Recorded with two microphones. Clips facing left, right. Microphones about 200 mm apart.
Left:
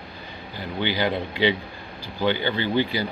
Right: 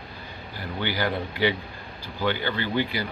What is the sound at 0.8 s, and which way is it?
A man's voice, 20° left (ahead or behind).